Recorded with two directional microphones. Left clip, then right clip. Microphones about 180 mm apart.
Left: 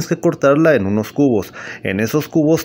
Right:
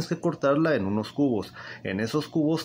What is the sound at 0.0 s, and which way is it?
Speech, 35° left (ahead or behind).